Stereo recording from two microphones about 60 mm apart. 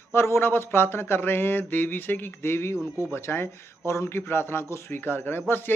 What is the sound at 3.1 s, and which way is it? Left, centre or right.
Speech, left.